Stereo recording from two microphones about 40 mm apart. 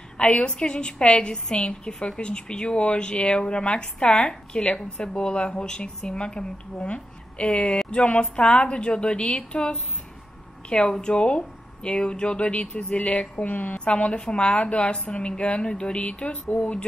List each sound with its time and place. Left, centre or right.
0.2 s a woman's voice: left
13.5 s a woman's voice: left
13.7 s a woman's voice: left